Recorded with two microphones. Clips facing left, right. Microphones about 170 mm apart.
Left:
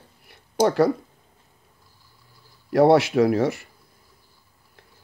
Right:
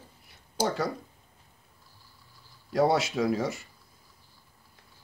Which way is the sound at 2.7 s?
65° left (ahead or behind).